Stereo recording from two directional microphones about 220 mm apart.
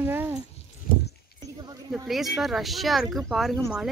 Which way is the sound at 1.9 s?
Centre (ahead or behind).